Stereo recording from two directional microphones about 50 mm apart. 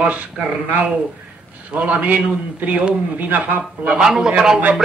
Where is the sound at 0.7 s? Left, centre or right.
Right.